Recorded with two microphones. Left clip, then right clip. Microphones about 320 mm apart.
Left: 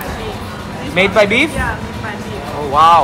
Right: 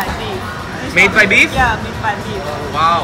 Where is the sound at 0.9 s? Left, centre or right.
Centre.